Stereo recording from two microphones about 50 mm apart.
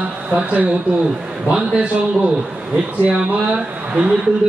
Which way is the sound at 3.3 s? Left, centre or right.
Right.